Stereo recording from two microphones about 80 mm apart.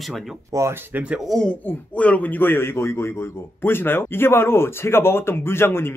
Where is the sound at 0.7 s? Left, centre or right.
Right.